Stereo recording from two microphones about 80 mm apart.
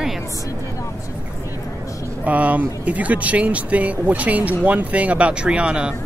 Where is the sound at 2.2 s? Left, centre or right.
Centre.